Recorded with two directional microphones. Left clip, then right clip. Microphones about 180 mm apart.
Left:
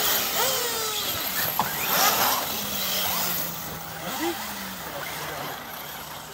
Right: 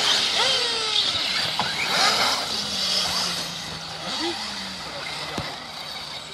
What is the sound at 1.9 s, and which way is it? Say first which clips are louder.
Mechanisms: right 2 dB; 25° right (ahead or behind).